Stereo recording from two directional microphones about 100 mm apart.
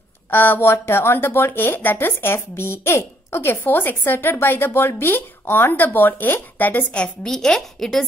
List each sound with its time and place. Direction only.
0.3 s speech: 20° left (ahead or behind); by 8.0 s 5° left (ahead or behind)